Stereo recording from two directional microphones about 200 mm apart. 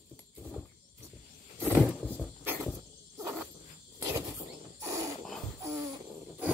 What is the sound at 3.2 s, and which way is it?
Cricket, 10° right (ahead or behind).